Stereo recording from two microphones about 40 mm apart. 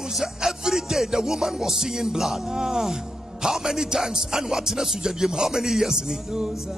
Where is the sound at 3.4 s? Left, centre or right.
Centre.